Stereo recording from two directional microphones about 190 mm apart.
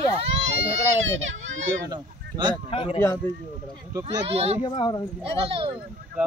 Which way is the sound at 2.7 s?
30° left (ahead or behind).